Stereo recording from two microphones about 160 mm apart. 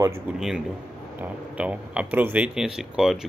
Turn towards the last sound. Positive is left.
turn(degrees=-5)  # may be behind; listen again after turning